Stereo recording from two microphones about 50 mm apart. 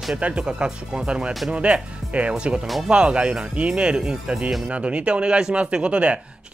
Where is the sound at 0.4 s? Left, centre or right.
Centre.